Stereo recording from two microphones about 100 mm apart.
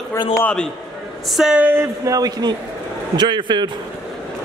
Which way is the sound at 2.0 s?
40° right (ahead or behind).